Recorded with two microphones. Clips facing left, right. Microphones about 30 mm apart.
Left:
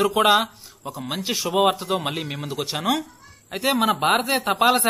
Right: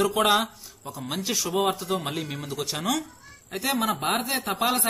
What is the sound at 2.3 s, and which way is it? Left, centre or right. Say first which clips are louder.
A man's voice: left 3 dB; left.